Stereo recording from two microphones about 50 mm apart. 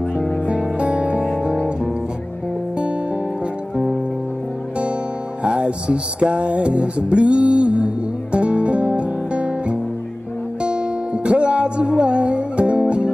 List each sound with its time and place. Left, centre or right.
0.5 s music: right
3.7 s music: centre
5.4 s music: right